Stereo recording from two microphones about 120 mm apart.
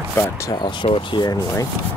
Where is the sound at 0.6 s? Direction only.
45° left (ahead or behind).